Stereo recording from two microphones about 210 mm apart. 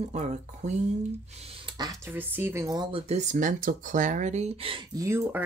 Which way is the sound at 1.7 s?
15° right (ahead or behind).